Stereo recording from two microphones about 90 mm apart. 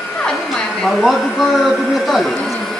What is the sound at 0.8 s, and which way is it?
A man's voice, centre (ahead or behind).